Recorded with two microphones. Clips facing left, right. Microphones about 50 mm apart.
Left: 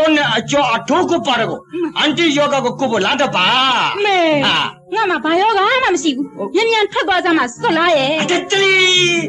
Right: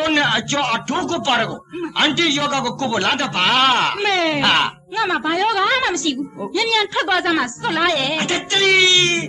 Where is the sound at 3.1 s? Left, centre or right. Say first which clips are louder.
Left 6 dB; left.